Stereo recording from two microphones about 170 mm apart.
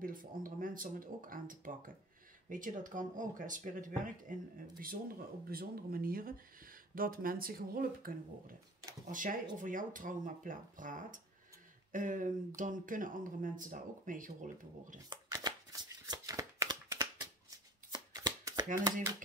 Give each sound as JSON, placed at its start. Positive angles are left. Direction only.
{"t": 0.0, "sound": "speech", "side_deg": -55}
{"t": 15.0, "sound": "shuffling cards", "side_deg": -25}